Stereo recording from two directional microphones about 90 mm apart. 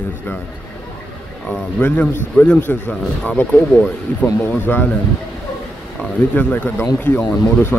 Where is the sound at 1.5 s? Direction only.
15° left (ahead or behind).